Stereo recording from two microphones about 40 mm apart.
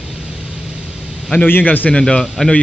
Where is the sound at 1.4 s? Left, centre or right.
Left.